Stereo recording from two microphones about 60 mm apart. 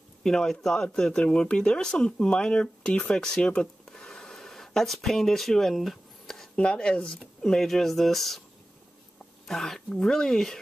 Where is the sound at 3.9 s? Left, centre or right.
Centre.